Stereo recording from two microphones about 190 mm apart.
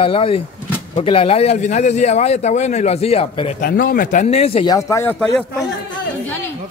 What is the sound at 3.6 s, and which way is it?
A man's voice, 50° left (ahead or behind).